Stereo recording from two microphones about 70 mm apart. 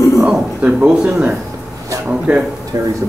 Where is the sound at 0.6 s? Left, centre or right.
Right.